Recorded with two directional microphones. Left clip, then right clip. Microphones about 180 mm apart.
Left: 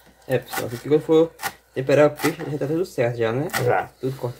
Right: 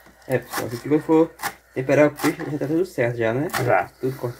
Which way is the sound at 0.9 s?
5° left (ahead or behind).